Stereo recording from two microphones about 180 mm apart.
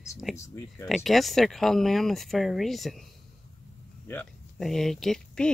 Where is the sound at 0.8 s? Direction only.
Centre (ahead or behind).